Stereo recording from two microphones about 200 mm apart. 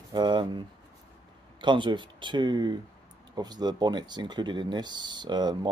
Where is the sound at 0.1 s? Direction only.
20° right (ahead or behind).